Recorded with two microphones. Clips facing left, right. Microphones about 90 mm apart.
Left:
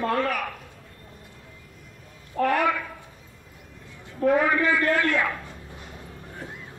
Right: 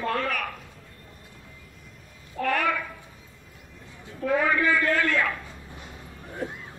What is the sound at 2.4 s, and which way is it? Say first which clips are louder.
Speech: left 4 dB; 60° left (ahead or behind).